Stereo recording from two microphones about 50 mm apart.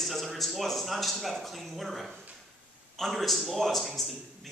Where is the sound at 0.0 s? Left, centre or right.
Centre.